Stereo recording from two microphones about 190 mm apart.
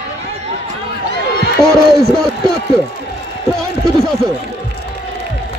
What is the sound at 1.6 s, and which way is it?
Speech, centre (ahead or behind).